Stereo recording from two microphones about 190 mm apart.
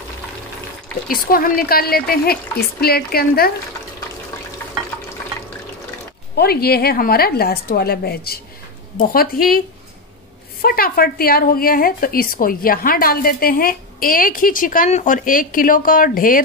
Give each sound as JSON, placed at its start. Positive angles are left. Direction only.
{"t": 1.0, "sound": "a woman's voice", "side_deg": 50}
{"t": 6.3, "sound": "a woman's voice", "side_deg": 55}
{"t": 10.6, "sound": "a woman's voice", "side_deg": 50}